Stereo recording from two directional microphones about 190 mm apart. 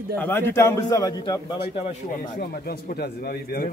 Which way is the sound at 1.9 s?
45° left (ahead or behind).